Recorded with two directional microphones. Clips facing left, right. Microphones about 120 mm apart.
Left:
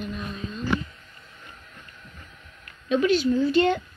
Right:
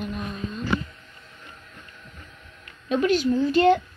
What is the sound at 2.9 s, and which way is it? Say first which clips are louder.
Speech: even; 45° right (ahead or behind).